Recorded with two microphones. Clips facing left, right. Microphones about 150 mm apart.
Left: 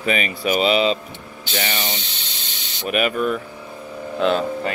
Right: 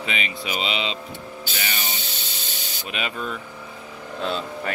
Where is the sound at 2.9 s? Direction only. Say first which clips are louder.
Left 10 dB; 60° left (ahead or behind).